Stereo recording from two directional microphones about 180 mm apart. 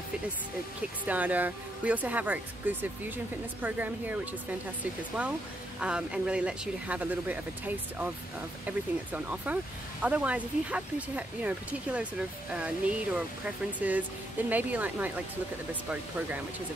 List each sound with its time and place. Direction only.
1.0 s speech: 10° right (ahead or behind)
5.8 s speech: 5° right (ahead or behind)